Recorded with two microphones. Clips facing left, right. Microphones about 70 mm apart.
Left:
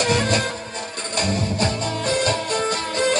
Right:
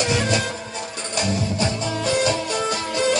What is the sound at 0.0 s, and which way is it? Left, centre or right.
Music, left.